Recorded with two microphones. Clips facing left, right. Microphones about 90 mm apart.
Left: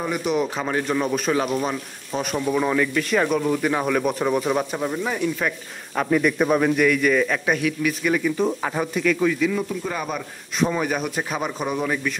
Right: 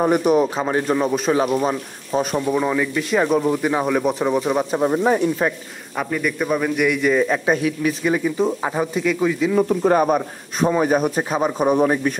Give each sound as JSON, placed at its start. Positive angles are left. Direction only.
{"t": 0.0, "sound": "speech", "side_deg": -40}
{"t": 2.4, "sound": "speech", "side_deg": -10}
{"t": 2.9, "sound": "speech", "side_deg": -20}
{"t": 6.0, "sound": "a man's voice", "side_deg": 5}
{"t": 6.8, "sound": "speech", "side_deg": -20}
{"t": 9.6, "sound": "speech", "side_deg": -45}